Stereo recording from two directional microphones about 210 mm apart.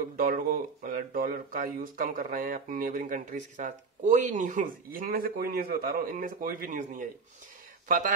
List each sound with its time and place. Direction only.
0.2 s speech: 40° right (ahead or behind)